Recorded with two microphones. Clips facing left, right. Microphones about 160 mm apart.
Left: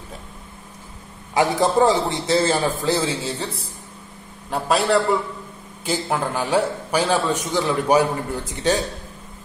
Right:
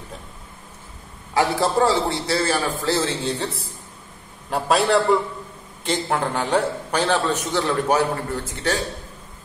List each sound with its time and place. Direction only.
1.3 s a man's voice: 20° left (ahead or behind)
3.3 s a man's voice: centre (ahead or behind); by 8.8 s 20° left (ahead or behind)